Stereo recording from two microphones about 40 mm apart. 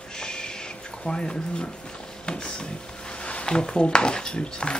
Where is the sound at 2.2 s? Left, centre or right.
Left.